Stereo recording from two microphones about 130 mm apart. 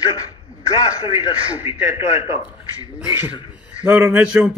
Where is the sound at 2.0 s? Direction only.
60° left (ahead or behind).